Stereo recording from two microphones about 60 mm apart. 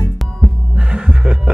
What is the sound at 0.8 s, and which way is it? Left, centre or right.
Heart sounds, centre.